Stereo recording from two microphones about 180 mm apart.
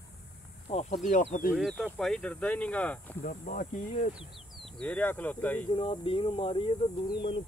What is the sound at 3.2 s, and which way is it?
Speech, 50° left (ahead or behind).